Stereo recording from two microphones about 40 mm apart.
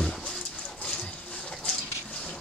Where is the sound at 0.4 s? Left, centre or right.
Left.